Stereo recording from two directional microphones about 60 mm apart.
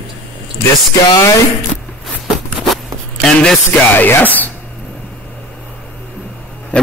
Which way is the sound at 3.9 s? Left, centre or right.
Left.